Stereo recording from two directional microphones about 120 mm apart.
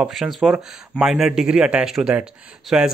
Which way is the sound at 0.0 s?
Centre (ahead or behind).